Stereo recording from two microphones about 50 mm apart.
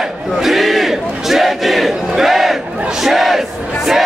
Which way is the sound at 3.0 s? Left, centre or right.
Centre.